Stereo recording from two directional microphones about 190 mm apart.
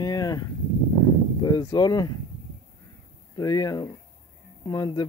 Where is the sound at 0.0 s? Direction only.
20° left (ahead or behind).